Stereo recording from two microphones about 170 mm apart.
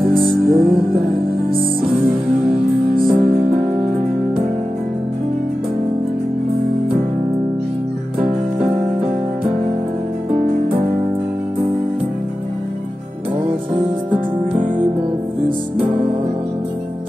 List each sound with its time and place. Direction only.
0.0 s music: centre (ahead or behind)
8.5 s music: 5° right (ahead or behind)
15.9 s music: 45° right (ahead or behind)